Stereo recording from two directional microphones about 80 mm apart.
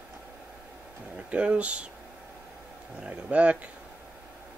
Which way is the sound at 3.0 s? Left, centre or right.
Centre.